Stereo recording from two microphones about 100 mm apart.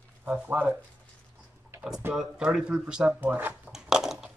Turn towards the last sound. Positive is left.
turn(degrees=-5)  # may be behind; listen again after turning